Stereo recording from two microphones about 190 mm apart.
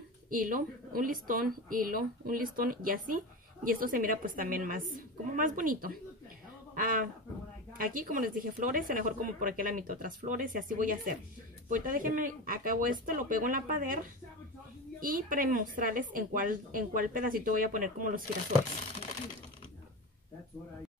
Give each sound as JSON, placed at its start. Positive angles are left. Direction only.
{"t": 0.3, "sound": "a woman's voice", "side_deg": -45}
{"t": 15.0, "sound": "a woman's voice", "side_deg": -45}